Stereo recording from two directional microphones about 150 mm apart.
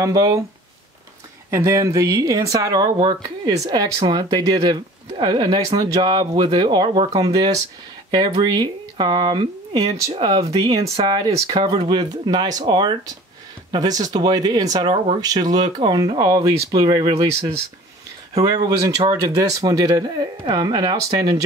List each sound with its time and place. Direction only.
0.0 s speech: 20° right (ahead or behind)
1.5 s speech: 20° right (ahead or behind); by 17.6 s 40° right (ahead or behind)
18.4 s speech: 25° right (ahead or behind)